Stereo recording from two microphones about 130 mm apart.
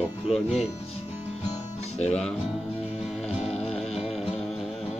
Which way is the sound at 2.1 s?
5° left (ahead or behind).